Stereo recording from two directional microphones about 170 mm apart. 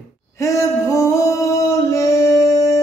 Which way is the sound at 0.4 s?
20° left (ahead or behind).